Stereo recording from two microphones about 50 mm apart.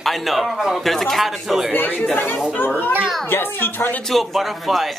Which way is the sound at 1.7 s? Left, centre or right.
Left.